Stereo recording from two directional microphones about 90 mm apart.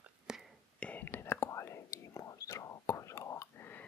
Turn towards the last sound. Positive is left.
turn(degrees=25)  # may be behind; listen again after turning